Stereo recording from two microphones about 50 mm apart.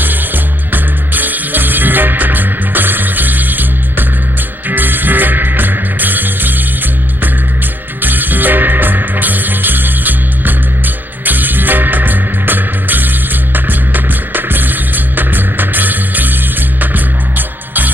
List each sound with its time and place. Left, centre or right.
0.7 s music: right
8.0 s music: right